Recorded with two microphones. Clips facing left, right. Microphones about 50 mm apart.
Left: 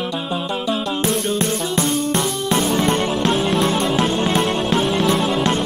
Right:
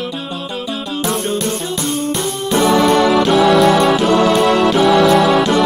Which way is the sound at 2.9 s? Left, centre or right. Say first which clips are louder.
Right 7 dB; right.